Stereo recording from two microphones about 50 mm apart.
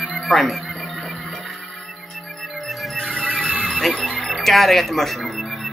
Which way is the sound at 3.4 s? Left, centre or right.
Right.